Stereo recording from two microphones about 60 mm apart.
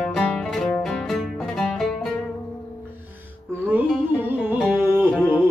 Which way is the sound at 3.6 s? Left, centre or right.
Right.